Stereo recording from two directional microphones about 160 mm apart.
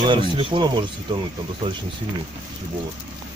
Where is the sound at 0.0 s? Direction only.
30° right (ahead or behind).